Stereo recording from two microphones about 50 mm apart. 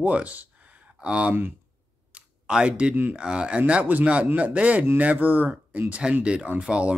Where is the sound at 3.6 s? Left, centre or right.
Right.